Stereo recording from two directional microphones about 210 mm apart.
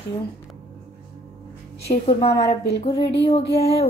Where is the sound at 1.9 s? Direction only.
20° left (ahead or behind).